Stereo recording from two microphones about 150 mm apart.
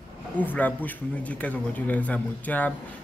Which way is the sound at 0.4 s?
10° left (ahead or behind).